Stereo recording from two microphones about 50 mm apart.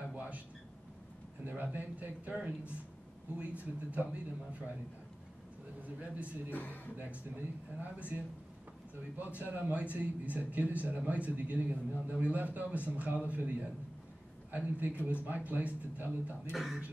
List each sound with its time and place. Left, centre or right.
0.1 s a sound: right
1.5 s speech: right
6.5 s speech: left
7.0 s speech: right
9.2 s speech: right
16.5 s speech: centre